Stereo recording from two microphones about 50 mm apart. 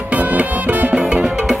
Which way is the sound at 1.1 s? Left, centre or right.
Centre.